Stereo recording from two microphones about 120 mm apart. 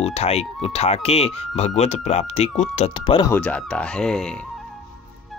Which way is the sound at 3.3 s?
10° left (ahead or behind).